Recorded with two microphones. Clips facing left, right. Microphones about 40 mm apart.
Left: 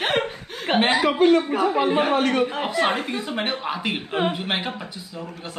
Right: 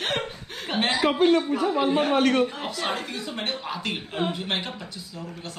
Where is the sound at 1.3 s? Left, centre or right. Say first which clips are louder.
Left 3 dB; left.